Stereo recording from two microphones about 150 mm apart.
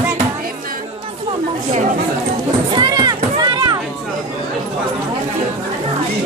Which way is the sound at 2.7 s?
25° right (ahead or behind).